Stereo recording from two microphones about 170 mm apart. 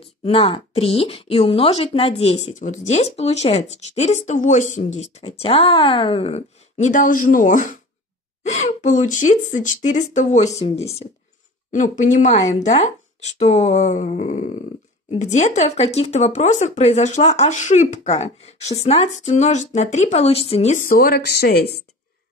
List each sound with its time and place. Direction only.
0.0 s speech: 35° left (ahead or behind); by 21.8 s 70° left (ahead or behind)